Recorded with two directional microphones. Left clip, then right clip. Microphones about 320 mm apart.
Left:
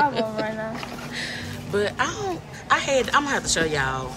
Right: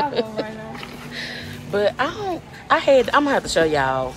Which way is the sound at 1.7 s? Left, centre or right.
Centre.